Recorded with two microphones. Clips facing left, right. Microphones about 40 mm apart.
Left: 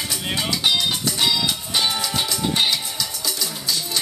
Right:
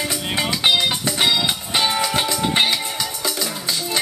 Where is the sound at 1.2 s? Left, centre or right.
Right.